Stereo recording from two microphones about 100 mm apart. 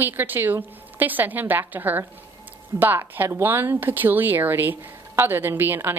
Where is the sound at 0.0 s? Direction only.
20° right (ahead or behind).